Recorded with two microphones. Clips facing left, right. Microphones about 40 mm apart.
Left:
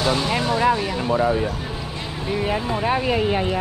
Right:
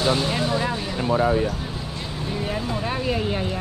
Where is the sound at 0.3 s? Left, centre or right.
Centre.